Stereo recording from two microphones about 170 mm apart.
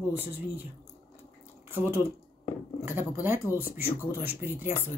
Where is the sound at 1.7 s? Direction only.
10° right (ahead or behind).